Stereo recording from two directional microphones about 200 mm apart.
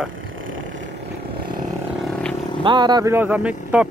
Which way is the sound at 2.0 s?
5° left (ahead or behind).